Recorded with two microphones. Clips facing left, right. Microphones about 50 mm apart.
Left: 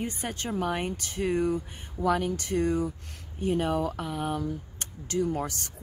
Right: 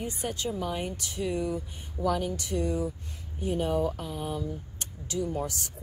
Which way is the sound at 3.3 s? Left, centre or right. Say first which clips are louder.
Left 1 dB; left.